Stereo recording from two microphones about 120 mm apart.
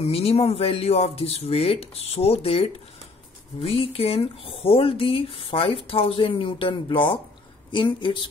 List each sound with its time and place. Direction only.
0.0 s speech: 55° left (ahead or behind)